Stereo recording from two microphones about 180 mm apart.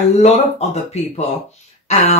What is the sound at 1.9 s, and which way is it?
Speech, 35° left (ahead or behind).